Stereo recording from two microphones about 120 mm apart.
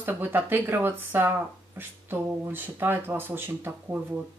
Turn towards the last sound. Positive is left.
turn(degrees=-20)  # may be behind; listen again after turning